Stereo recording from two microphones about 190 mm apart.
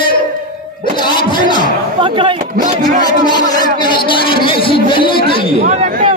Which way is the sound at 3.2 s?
20° left (ahead or behind).